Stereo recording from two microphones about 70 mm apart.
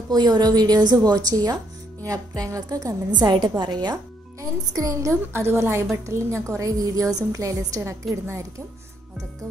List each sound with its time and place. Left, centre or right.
0.1 s speech: right
3.1 s a woman's voice: right
4.4 s a woman's voice: right